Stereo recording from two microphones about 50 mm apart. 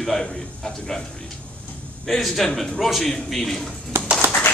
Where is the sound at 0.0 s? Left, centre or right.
Centre.